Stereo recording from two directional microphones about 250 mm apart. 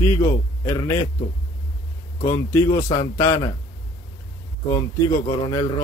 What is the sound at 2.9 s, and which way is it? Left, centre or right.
Speech, centre.